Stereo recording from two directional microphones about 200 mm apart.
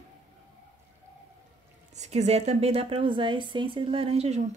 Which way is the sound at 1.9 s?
35° right (ahead or behind).